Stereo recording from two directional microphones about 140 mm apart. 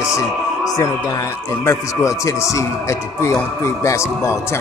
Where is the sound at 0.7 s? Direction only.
25° left (ahead or behind).